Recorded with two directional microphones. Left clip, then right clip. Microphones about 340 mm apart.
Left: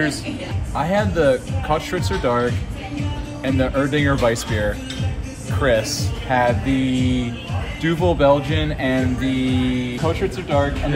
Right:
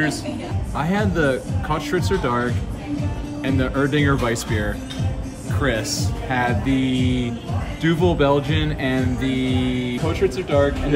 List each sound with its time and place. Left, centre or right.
0.7 s speech: centre
10.0 s speech: centre